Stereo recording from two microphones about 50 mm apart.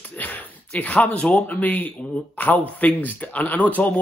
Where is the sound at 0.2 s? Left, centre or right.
Left.